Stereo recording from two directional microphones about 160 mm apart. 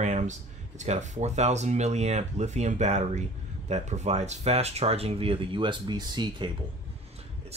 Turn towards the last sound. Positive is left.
turn(degrees=-25)  # may be behind; listen again after turning